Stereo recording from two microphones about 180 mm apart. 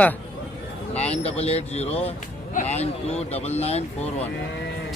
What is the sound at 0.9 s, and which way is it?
Speech, 35° left (ahead or behind).